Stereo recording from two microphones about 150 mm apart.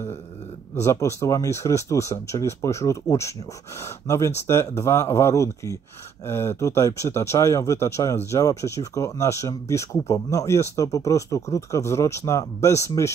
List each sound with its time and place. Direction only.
0.7 s speech: 20° left (ahead or behind)